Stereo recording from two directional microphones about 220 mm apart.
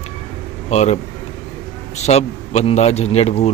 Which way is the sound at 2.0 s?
30° left (ahead or behind).